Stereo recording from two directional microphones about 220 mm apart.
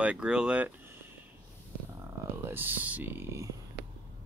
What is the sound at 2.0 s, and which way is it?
Speech, 10° right (ahead or behind).